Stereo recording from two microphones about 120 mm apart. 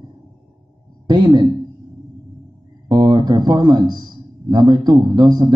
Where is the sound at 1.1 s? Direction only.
40° right (ahead or behind).